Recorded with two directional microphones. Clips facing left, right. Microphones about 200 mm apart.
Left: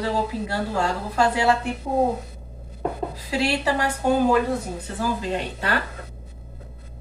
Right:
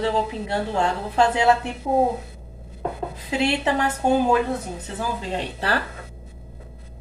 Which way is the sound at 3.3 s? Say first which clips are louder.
Right 1 dB; 20° right (ahead or behind).